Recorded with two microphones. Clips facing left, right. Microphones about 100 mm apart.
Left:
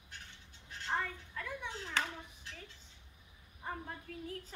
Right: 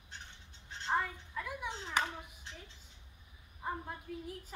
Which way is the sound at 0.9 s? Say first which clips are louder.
Right 3 dB; 10° right (ahead or behind).